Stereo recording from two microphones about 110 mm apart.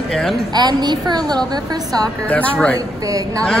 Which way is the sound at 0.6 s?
40° right (ahead or behind).